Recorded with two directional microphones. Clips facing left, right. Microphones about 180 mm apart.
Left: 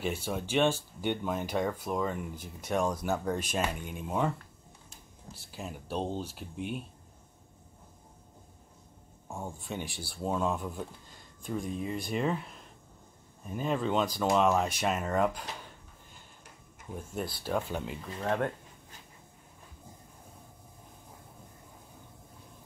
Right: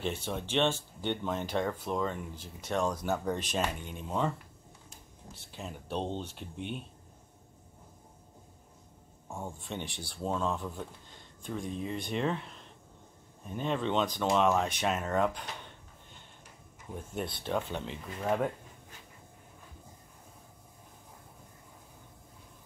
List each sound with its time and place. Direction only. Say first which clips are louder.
0.0 s speech: left 1 dB; 10° left (ahead or behind)
5.5 s speech: left 1 dB; 5° left (ahead or behind)
9.3 s speech: left 1 dB; 5° left (ahead or behind)
16.9 s speech: even; 5° left (ahead or behind)
18.0 s speech: right 1 dB; 5° right (ahead or behind)